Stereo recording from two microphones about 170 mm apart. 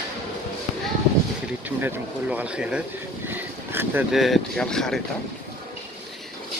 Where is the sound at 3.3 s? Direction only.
10° right (ahead or behind).